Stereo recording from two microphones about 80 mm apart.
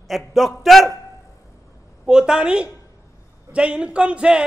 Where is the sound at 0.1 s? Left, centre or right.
Centre.